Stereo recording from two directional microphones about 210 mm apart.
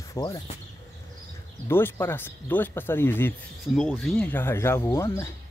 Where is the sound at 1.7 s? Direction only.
10° left (ahead or behind).